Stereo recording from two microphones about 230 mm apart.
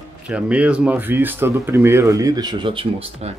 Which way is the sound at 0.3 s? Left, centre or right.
Centre.